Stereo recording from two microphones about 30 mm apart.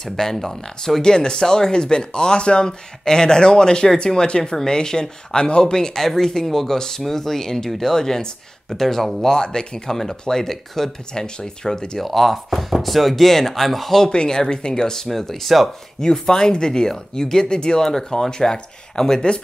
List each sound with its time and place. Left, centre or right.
0.2 s speech: centre
1.0 s speech: left
2.6 s speech: left
8.6 s speech: centre
9.2 s speech: left
11.1 s speech: left
12.0 s speech: centre
14.0 s speech: left
15.4 s speech: centre
16.0 s speech: left
17.8 s speech: centre